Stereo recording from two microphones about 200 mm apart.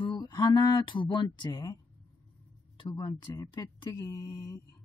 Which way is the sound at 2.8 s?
20° left (ahead or behind).